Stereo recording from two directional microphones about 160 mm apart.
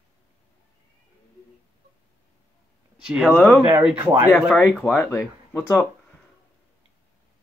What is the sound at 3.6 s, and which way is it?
Speech, 10° right (ahead or behind).